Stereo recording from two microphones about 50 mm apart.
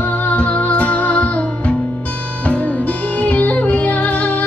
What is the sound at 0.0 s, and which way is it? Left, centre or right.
Music, left.